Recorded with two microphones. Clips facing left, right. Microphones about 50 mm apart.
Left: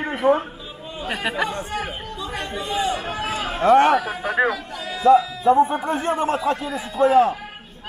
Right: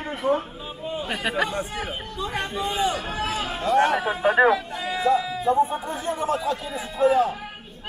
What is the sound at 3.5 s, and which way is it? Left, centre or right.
Speech, left.